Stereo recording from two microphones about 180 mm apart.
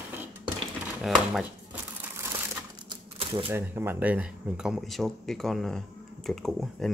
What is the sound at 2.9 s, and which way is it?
Typewriter, 30° right (ahead or behind).